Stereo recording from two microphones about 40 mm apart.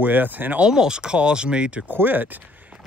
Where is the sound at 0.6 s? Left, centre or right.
Centre.